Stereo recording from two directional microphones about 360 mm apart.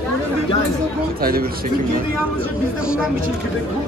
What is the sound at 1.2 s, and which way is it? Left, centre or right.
Speech, right.